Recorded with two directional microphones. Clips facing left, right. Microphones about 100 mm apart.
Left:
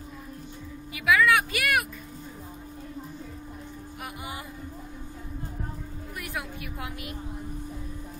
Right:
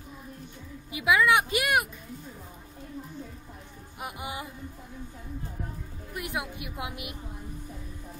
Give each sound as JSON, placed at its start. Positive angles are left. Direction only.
{"t": 0.9, "sound": "a sound", "side_deg": -20}
{"t": 4.0, "sound": "music", "side_deg": -20}
{"t": 6.1, "sound": "a woman's voice", "side_deg": -20}